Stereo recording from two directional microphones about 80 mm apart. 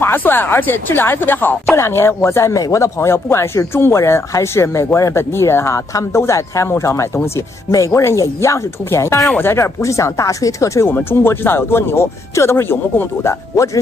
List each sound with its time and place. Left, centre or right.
0.0 s speech: left
9.8 s speech: left
10.9 s speech: left